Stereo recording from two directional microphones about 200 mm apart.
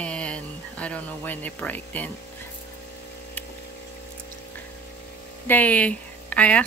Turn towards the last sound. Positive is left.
turn(degrees=5)  # may be behind; listen again after turning